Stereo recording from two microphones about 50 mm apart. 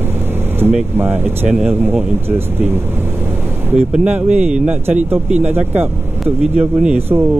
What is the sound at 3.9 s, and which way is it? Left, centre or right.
Speech, right.